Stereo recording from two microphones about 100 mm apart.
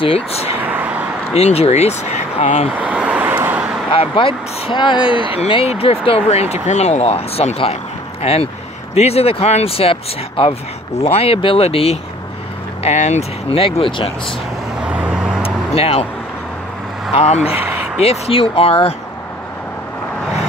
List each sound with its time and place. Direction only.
0.0 s speech: 80° left
0.6 s vehicle: 20° right (ahead or behind)
1.3 s speech: 90° left
2.8 s vehicle: 15° right (ahead or behind)
3.9 s speech: 60° left (ahead or behind)
5.3 s speech: 70° left (ahead or behind)
8.9 s speech: 90° left; by 10.5 s 70° left (ahead or behind)
11.0 s speech: 90° left
13.6 s speech: 65° left (ahead or behind)
14.9 s vehicle: 10° right (ahead or behind)
15.4 s vehicle: 80° left
17.1 s speech: 90° left
17.6 s a sound: 20° right (ahead or behind)
17.9 s speech: 90° left